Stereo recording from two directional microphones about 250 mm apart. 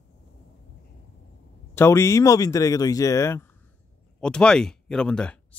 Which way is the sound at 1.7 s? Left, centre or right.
Centre.